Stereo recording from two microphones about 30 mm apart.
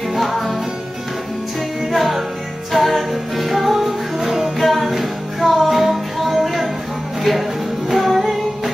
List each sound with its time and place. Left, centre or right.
0.2 s music: centre
1.9 s music: centre
4.6 s music: centre
7.9 s music: centre